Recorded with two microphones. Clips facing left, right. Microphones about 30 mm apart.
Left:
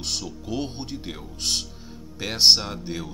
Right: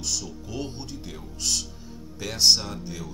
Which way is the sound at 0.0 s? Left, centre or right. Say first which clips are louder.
Left 2 dB; left.